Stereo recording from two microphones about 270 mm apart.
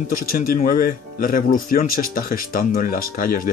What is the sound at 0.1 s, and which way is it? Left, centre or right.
Speech, left.